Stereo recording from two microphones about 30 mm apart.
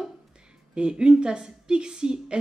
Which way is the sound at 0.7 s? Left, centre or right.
Right.